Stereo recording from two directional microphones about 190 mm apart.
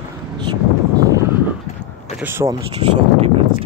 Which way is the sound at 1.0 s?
15° right (ahead or behind).